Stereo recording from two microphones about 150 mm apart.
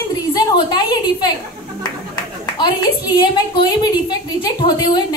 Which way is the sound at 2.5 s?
30° left (ahead or behind).